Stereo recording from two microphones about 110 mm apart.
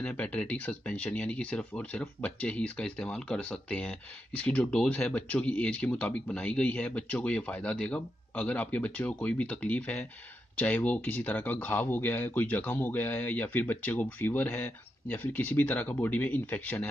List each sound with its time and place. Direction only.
0.0 s speech: 10° left (ahead or behind)